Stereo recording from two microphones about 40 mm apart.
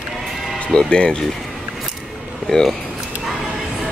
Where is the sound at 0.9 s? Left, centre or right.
Left.